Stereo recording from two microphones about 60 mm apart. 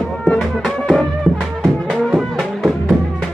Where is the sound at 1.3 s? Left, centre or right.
Right.